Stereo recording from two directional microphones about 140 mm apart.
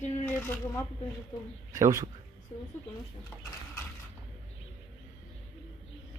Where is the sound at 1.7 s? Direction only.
25° right (ahead or behind).